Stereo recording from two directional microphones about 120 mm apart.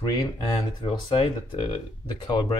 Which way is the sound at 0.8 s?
45° left (ahead or behind).